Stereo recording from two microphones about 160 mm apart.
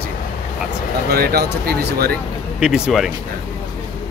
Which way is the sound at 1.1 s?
75° right (ahead or behind).